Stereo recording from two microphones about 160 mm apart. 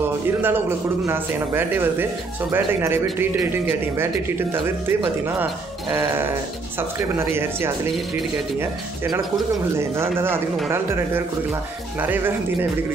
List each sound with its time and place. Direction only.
0.4 s a man's voice: 15° right (ahead or behind)
6.8 s a man's voice: 15° right (ahead or behind)
9.8 s a man's voice: 15° right (ahead or behind)